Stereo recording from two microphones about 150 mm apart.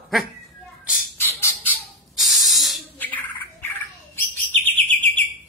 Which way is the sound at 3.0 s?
10° left (ahead or behind).